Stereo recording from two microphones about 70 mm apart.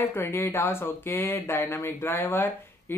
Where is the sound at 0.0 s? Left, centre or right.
Left.